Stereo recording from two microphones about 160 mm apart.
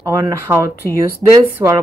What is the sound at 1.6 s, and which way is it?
Speech, 15° right (ahead or behind).